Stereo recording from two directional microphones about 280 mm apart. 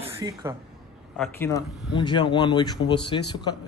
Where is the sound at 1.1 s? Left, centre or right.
Centre.